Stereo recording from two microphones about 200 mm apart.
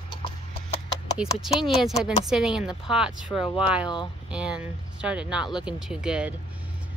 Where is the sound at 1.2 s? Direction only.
5° right (ahead or behind).